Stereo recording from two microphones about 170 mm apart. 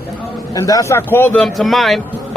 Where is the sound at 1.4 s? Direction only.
Centre (ahead or behind).